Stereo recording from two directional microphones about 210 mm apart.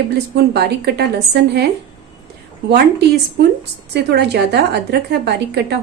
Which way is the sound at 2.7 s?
50° right (ahead or behind).